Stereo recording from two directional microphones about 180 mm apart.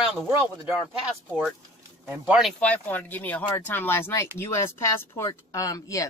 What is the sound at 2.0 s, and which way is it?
Speech, 5° right (ahead or behind).